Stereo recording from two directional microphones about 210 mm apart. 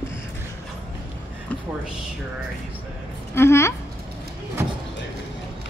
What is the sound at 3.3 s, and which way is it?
Speech, 10° left (ahead or behind).